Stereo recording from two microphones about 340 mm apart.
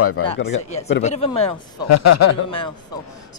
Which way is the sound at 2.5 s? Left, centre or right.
Centre.